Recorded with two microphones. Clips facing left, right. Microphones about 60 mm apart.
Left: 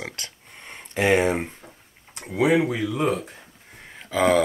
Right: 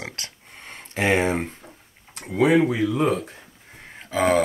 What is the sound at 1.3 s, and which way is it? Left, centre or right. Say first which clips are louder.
Speech: right 1 dB; centre.